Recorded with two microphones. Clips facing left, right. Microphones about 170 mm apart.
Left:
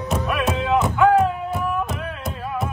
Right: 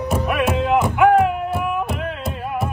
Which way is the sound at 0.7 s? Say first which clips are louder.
Right 1 dB; 15° right (ahead or behind).